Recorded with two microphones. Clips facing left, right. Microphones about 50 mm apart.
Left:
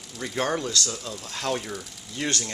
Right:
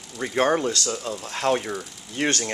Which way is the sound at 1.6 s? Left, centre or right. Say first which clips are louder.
Right 5 dB; centre.